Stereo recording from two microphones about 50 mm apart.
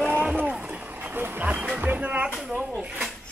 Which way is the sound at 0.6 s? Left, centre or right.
Right.